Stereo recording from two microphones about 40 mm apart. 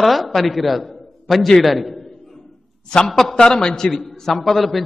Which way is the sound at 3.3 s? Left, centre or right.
Centre.